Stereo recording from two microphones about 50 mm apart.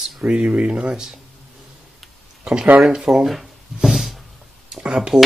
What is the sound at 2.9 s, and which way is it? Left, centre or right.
Speech, centre.